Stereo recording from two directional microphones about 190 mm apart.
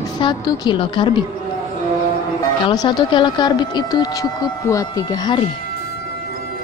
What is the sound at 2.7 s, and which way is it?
A woman's voice, 25° left (ahead or behind).